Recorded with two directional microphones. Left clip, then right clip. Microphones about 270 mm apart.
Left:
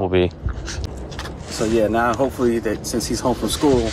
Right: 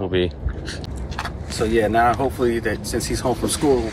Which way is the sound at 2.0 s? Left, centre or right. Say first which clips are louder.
Right 1 dB; centre.